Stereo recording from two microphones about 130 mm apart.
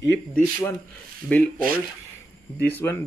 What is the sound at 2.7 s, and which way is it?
Speech, 20° left (ahead or behind).